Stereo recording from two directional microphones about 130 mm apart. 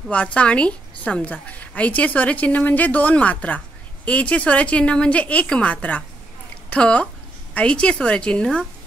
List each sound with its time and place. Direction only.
0.1 s a woman's voice: 10° left (ahead or behind)